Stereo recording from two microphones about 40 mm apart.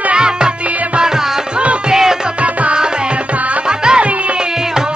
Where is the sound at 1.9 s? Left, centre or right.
Centre.